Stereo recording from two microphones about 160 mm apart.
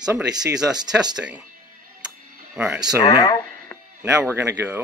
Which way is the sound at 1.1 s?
5° right (ahead or behind).